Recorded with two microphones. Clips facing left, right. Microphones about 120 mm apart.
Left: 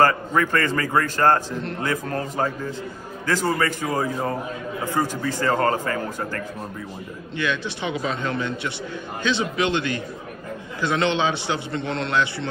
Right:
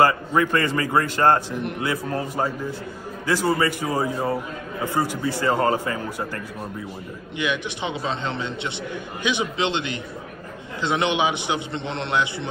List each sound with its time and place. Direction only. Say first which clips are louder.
0.0 s a man's voice: even; 15° right (ahead or behind)